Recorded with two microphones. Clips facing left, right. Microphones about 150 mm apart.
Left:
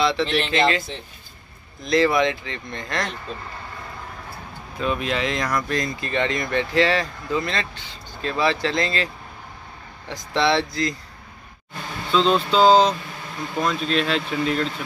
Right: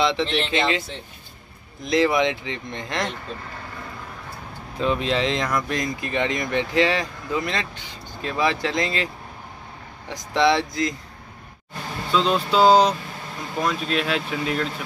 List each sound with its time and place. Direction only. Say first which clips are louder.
0.2 s speech: left 1 dB; centre (ahead or behind)
0.5 s speech: left 2 dB; 15° right (ahead or behind)
4.7 s speech: right 2 dB; 25° right (ahead or behind)
12.1 s speech: left 2 dB; 10° right (ahead or behind)